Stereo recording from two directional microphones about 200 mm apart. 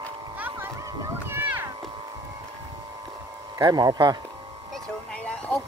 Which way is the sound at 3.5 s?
20° right (ahead or behind).